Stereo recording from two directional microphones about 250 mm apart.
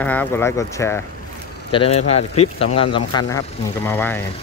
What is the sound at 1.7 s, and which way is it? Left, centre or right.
Speech, left.